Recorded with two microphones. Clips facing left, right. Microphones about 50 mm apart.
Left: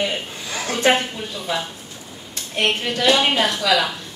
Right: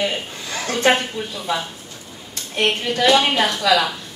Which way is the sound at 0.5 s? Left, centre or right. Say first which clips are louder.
Right 1 dB; centre.